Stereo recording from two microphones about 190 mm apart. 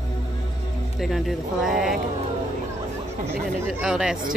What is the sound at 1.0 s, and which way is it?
Speech, centre (ahead or behind).